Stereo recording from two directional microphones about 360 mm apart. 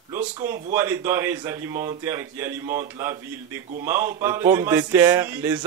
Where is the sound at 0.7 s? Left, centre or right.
Centre.